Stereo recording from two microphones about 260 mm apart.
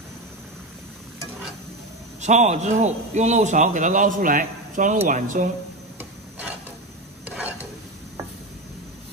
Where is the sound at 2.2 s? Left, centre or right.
Right.